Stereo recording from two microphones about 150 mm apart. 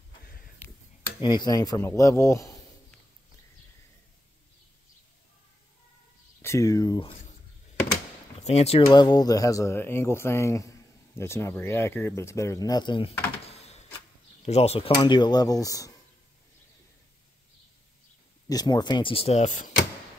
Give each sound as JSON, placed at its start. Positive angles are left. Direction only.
{"t": 0.2, "sound": "a sound", "side_deg": 70}
{"t": 1.2, "sound": "speech", "side_deg": 25}
{"t": 6.4, "sound": "speech", "side_deg": 20}
{"t": 8.5, "sound": "speech", "side_deg": 45}
{"t": 8.8, "sound": "speech", "side_deg": 30}
{"t": 13.5, "sound": "a sound", "side_deg": 45}
{"t": 14.4, "sound": "speech", "side_deg": 45}
{"t": 15.0, "sound": "speech", "side_deg": 30}
{"t": 18.5, "sound": "speech", "side_deg": 25}